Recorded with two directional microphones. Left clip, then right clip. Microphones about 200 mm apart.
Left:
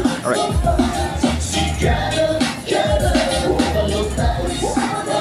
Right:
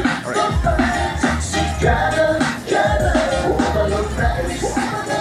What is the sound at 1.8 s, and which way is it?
Music, 15° right (ahead or behind).